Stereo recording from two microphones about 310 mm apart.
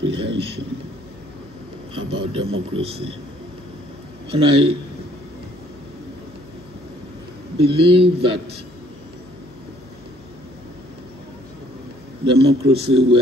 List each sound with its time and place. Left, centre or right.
0.0 s a sound: centre
2.0 s a man's voice: centre
4.3 s speech: centre
7.5 s speech: centre
12.4 s a man's voice: centre